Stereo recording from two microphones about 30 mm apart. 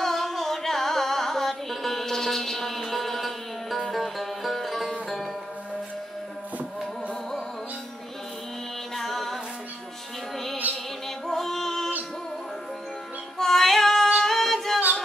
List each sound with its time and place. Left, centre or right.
0.0 s carnatic music: centre
1.5 s mantra: centre
3.9 s music: centre
8.9 s music: centre
10.6 s music: right
11.2 s music: centre
13.4 s female singing: centre
14.2 s a capella: centre